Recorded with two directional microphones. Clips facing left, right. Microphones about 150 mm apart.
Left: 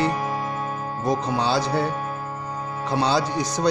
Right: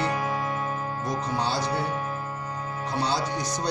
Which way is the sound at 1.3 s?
90° left.